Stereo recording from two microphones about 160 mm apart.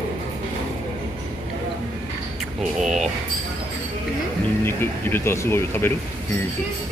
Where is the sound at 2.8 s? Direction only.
Centre (ahead or behind).